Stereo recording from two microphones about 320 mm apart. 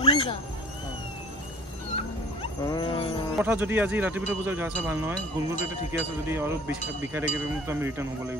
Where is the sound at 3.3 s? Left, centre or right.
Centre.